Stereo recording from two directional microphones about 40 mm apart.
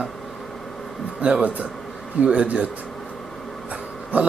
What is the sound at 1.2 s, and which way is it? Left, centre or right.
Speech, right.